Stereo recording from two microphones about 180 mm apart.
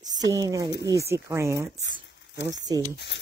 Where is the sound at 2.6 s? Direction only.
20° right (ahead or behind).